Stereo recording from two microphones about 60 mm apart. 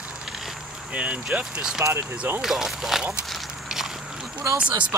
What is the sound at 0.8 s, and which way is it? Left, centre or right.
Speech, right.